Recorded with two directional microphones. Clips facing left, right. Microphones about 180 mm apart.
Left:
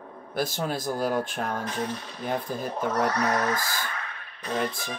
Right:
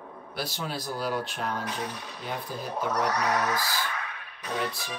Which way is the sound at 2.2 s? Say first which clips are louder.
Left 5 dB; 45° left (ahead or behind).